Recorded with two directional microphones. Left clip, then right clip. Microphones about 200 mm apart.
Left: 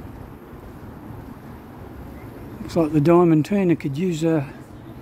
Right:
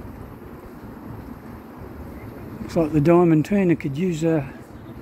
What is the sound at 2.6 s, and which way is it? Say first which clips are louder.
Speech: left 1 dB; 10° left (ahead or behind).